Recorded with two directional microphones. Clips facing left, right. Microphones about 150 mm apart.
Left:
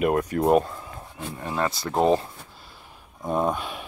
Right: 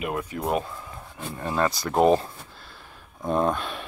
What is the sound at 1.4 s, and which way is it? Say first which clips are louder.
Speech: right 2 dB; 15° left (ahead or behind).